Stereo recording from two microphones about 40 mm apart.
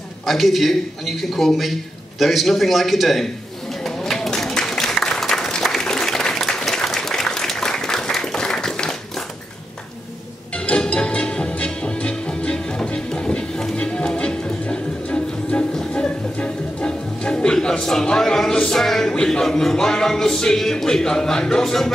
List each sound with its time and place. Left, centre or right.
0.3 s a man's voice: centre
3.8 s a sound: centre
5.6 s applause: centre
10.8 s music: left
19.4 s a man's voice: centre